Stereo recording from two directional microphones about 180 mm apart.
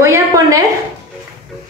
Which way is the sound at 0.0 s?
15° right (ahead or behind).